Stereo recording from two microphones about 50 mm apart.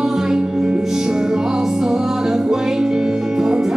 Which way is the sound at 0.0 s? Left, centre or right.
Centre.